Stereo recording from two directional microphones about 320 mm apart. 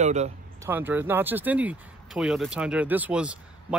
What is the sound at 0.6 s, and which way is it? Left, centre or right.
Speech, centre.